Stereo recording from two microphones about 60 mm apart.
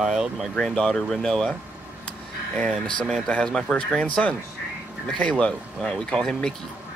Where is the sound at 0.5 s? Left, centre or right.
Centre.